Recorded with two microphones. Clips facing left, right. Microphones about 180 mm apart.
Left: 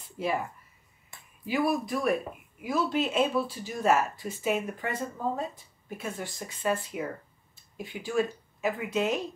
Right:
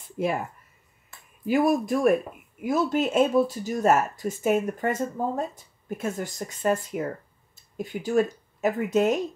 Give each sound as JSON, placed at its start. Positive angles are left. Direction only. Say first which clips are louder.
{"t": 0.2, "sound": "speech", "louder": "right 5 dB", "side_deg": -50}
{"t": 1.4, "sound": "speech", "louder": "right 6 dB", "side_deg": -45}